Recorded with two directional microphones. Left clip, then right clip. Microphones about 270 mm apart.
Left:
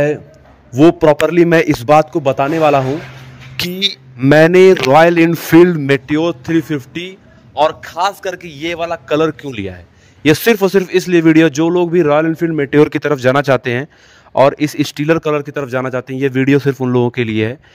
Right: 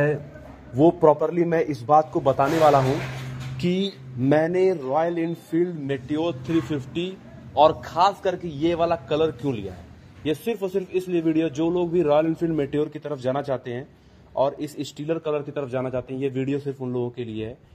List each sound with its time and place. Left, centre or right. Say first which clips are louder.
0.7 s speech: left 8 dB; left
3.8 s speech: left 12 dB; left